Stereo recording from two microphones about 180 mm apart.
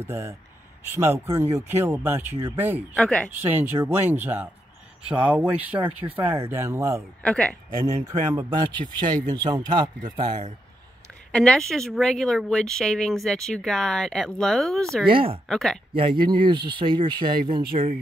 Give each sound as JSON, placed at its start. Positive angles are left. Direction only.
{"t": 0.0, "sound": "speech", "side_deg": -15}
{"t": 3.0, "sound": "speech", "side_deg": 5}
{"t": 3.3, "sound": "speech", "side_deg": -10}
{"t": 7.2, "sound": "speech", "side_deg": 5}
{"t": 8.1, "sound": "speech", "side_deg": -25}
{"t": 11.3, "sound": "speech", "side_deg": 5}
{"t": 15.0, "sound": "speech", "side_deg": -30}
{"t": 15.4, "sound": "speech", "side_deg": 0}
{"t": 15.9, "sound": "speech", "side_deg": -30}